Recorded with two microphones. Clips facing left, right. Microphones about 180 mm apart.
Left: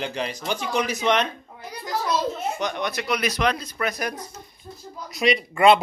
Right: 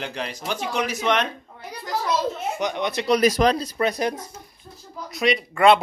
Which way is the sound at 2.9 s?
35° right (ahead or behind).